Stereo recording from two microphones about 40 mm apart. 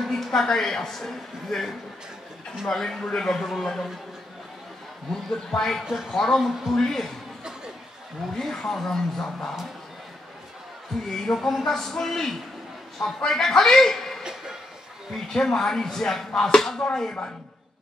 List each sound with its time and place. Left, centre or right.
0.1 s speech: centre
5.1 s speech: centre
8.4 s speech: centre
11.1 s a man's voice: centre
14.2 s a sound: centre
15.1 s speech: centre